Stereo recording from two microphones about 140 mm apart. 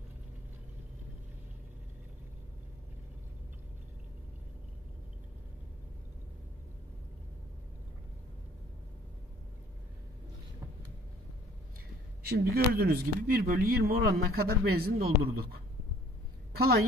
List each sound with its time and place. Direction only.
12.2 s speech: 90° right
16.5 s a woman's voice: 90° right